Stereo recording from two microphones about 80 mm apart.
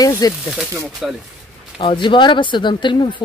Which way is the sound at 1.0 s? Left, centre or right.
Centre.